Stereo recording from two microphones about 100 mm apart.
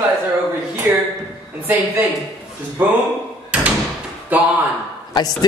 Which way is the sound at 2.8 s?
20° right (ahead or behind).